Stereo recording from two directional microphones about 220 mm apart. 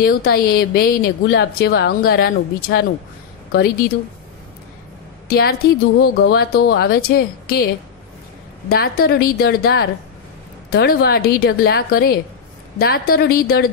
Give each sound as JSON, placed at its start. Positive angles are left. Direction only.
{"t": 0.0, "sound": "a woman's voice", "side_deg": 45}
{"t": 5.3, "sound": "a woman's voice", "side_deg": 45}
{"t": 8.6, "sound": "a woman's voice", "side_deg": 40}